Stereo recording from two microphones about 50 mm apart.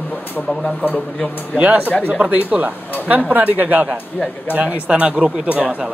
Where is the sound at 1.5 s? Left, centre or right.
Right.